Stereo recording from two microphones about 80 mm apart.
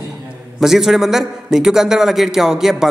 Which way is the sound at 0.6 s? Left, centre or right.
Centre.